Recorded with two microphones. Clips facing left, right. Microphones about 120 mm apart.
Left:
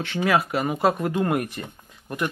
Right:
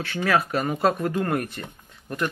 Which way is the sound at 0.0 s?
15° left (ahead or behind).